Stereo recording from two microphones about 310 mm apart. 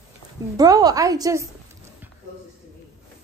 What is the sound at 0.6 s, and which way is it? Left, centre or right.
Speech, centre.